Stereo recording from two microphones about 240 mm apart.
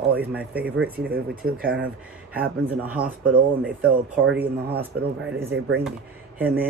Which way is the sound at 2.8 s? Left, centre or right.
Centre.